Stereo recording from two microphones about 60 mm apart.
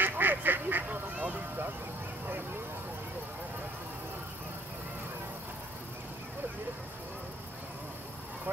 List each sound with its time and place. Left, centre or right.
0.0 s duck: right